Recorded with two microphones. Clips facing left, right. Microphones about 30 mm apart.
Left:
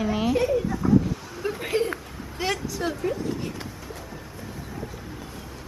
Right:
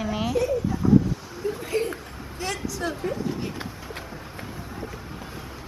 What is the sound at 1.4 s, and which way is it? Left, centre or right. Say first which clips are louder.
Speech: left 1 dB; left.